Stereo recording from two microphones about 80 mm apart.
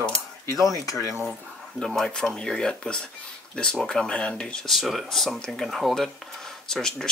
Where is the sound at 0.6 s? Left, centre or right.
Left.